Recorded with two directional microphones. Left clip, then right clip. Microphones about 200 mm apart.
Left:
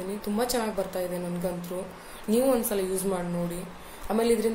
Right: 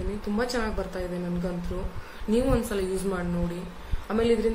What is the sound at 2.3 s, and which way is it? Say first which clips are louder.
A woman's voice: left 1 dB; 15° right (ahead or behind).